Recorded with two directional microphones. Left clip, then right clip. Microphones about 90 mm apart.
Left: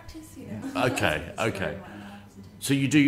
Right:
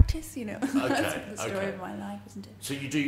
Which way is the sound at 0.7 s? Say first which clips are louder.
Left 3 dB; 45° left (ahead or behind).